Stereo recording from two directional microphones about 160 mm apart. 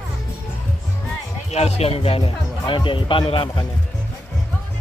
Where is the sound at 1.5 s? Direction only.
40° left (ahead or behind).